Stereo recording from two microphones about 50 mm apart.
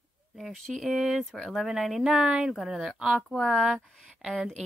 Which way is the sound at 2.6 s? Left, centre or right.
Centre.